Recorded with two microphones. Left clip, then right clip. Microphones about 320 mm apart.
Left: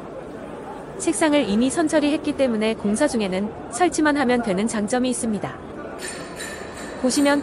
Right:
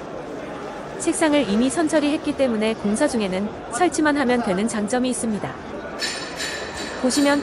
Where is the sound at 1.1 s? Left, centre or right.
Centre.